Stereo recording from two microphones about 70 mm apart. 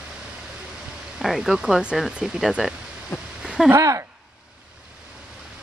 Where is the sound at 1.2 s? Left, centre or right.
Centre.